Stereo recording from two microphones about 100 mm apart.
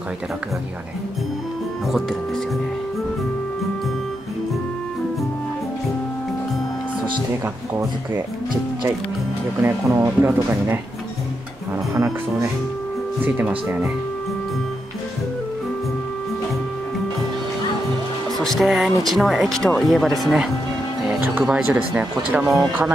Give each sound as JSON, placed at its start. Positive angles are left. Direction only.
{"t": 9.6, "sound": "speech", "side_deg": -25}
{"t": 11.9, "sound": "speech", "side_deg": -30}
{"t": 13.2, "sound": "speech", "side_deg": -15}
{"t": 18.4, "sound": "speech", "side_deg": 0}
{"t": 21.1, "sound": "speech", "side_deg": -15}